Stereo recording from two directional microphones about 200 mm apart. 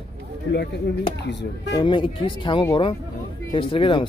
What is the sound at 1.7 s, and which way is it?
Speech, 25° left (ahead or behind).